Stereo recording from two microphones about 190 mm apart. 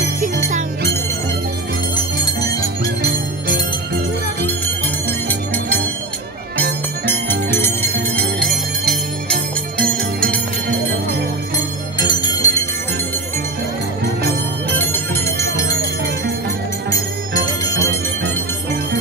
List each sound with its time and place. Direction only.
7.1 s music: 10° left (ahead or behind)
9.8 s music: 5° left (ahead or behind)
12.1 s music: 20° left (ahead or behind)
14.8 s bell: 10° left (ahead or behind)
17.3 s music: 15° left (ahead or behind)